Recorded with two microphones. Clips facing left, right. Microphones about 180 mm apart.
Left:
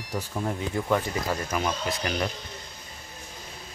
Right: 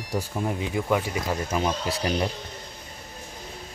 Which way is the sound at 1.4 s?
25° right (ahead or behind).